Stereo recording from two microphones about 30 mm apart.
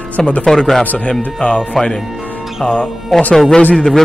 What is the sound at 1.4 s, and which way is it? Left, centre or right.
Speech, left.